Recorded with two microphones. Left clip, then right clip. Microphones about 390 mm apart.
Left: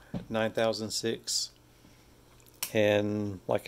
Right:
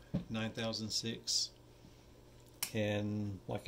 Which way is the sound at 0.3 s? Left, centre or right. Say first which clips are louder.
Left 13 dB; centre.